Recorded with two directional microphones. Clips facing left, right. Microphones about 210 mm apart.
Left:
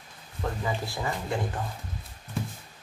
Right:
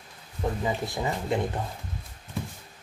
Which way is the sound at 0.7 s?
20° right (ahead or behind).